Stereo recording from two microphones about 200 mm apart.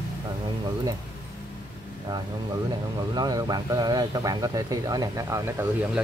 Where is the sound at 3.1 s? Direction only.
20° right (ahead or behind).